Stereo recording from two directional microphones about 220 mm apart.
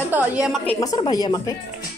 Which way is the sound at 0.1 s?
5° right (ahead or behind).